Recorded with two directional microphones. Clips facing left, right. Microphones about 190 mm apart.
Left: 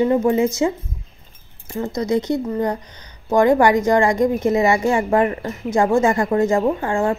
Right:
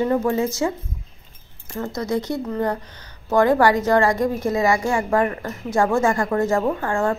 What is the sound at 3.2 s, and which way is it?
A woman's voice, 15° left (ahead or behind).